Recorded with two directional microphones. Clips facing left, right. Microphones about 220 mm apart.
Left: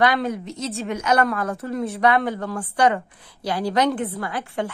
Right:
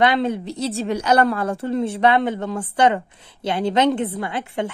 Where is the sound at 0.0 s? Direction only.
25° right (ahead or behind).